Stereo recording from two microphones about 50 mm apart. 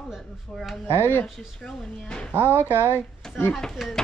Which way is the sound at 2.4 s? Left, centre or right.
Left.